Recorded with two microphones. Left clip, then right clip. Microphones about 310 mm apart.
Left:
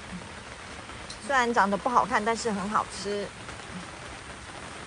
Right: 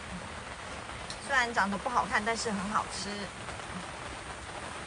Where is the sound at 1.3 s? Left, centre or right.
Centre.